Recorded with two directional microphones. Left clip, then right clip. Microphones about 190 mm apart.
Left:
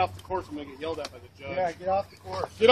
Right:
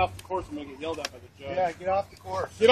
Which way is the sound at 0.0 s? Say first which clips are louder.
Even; 25° left (ahead or behind).